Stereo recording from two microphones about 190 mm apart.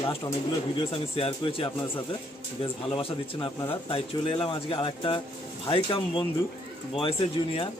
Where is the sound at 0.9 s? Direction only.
30° left (ahead or behind).